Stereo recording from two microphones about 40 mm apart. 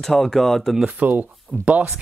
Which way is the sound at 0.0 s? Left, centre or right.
Centre.